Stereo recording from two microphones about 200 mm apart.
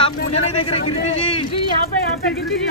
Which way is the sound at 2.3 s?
Centre (ahead or behind).